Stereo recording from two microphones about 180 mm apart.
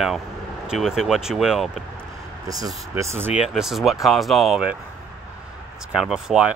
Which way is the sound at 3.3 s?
5° right (ahead or behind).